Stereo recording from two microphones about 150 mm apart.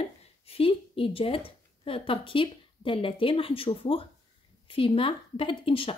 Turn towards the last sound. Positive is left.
turn(degrees=35)  # may be behind; listen again after turning